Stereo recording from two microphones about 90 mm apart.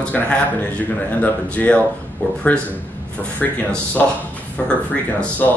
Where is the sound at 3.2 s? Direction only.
15° left (ahead or behind).